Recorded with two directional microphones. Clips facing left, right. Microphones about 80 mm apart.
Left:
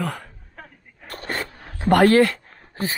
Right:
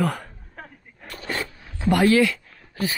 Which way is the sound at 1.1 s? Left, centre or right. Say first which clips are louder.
Left 1 dB; left.